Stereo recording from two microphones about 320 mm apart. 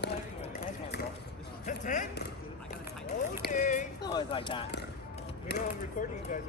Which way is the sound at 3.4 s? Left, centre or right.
Left.